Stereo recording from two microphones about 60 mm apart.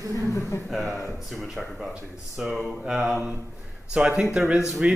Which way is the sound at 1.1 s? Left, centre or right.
Centre.